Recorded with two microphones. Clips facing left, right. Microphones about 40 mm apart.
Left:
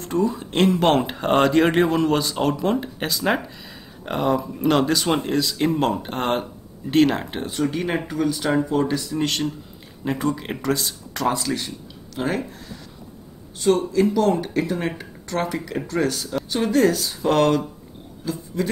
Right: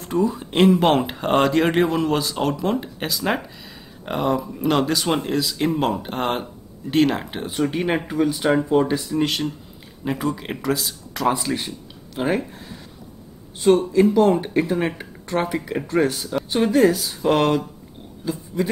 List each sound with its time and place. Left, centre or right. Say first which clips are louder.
0.0 s speech: right 1 dB; centre
7.6 s speech: right 2 dB; right
9.2 s speech: right 1 dB; centre
16.4 s a sound: right 3 dB; right
16.7 s speech: right 1 dB; centre